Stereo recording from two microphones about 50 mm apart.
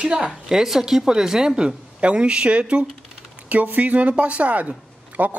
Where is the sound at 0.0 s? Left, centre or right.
Centre.